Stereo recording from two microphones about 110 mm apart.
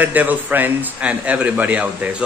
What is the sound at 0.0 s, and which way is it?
Speech, 15° right (ahead or behind).